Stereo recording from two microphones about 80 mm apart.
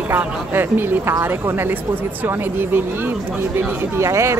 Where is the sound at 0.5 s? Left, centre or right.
Right.